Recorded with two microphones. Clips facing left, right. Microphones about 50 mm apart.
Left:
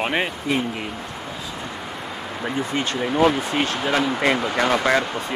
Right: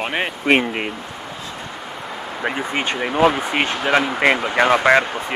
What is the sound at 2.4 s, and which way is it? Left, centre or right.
Speech, right.